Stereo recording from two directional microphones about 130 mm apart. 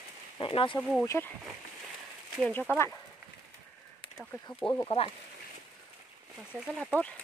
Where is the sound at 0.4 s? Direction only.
45° left (ahead or behind).